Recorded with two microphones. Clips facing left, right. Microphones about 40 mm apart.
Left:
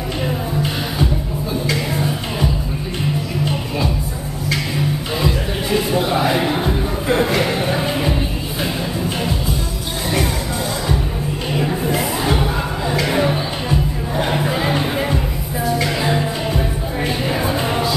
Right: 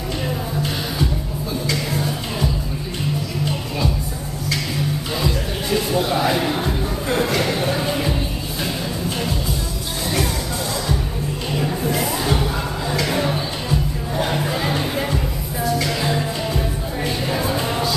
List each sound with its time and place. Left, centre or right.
1.7 s music: centre
4.5 s music: centre
11.5 s a sound: centre
15.6 s music: centre